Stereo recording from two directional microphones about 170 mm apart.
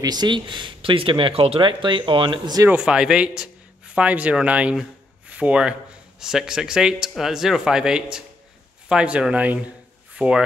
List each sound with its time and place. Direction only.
0.0 s speech: 25° right (ahead or behind)
2.7 s a man's voice: 5° right (ahead or behind)